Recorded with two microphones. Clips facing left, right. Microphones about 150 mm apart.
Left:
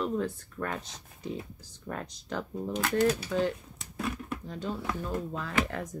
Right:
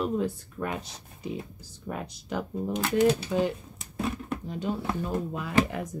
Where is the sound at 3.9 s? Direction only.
30° right (ahead or behind).